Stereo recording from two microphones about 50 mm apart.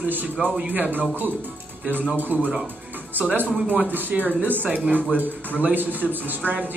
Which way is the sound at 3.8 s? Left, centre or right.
Right.